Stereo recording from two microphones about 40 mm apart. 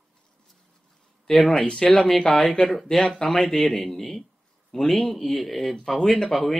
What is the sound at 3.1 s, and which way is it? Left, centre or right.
A man's voice, centre.